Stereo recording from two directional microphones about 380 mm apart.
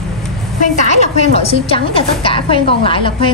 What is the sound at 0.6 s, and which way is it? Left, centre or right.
A woman's voice, centre.